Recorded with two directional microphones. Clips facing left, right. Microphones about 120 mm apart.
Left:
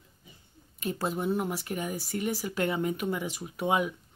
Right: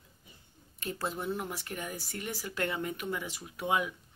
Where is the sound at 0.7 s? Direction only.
15° left (ahead or behind).